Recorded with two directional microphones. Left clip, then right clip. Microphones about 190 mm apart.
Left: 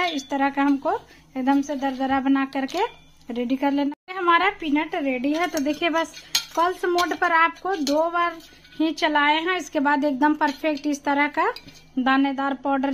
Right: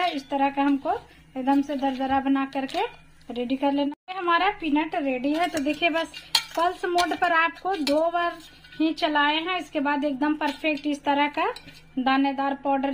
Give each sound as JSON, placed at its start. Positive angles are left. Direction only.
{"t": 0.0, "sound": "speech", "side_deg": 35}